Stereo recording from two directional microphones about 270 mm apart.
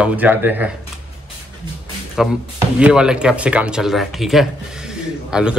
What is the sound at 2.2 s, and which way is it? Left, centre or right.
Speech, centre.